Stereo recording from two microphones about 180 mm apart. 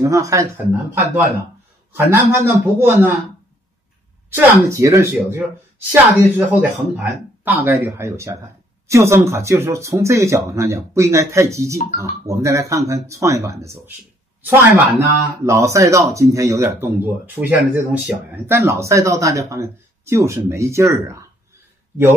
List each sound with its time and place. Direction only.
0.0 s speech: 15° right (ahead or behind)
2.0 s speech: 15° right (ahead or behind)
4.4 s speech: 15° right (ahead or behind)